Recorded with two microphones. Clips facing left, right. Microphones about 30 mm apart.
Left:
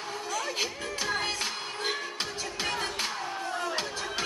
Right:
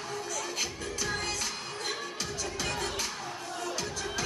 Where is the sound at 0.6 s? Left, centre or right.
Left.